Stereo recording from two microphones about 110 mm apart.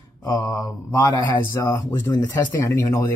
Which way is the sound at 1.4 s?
25° left (ahead or behind).